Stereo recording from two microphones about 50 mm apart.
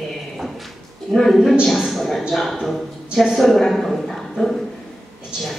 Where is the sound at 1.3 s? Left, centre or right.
Centre.